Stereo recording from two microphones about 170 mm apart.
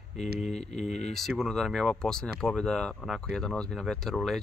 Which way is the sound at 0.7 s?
40° left (ahead or behind).